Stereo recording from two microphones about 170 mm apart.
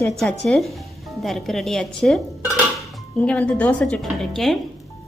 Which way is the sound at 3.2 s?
10° left (ahead or behind).